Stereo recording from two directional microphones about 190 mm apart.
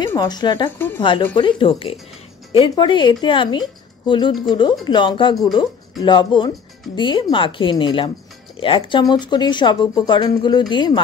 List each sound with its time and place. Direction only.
0.0 s speech: 20° left (ahead or behind)
0.7 s speech: 10° left (ahead or behind)
1.3 s speech: 25° left (ahead or behind)